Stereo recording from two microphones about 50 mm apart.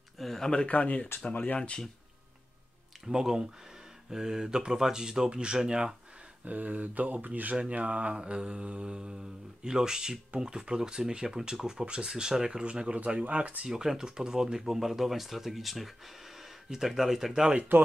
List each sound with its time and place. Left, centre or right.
0.2 s a sound: centre
0.7 s speech: left
1.6 s speech: centre
3.1 s speech: centre
6.4 s speech: right
7.5 s speech: right
13.7 s speech: centre